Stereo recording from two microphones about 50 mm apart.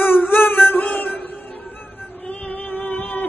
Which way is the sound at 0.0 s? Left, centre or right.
Left.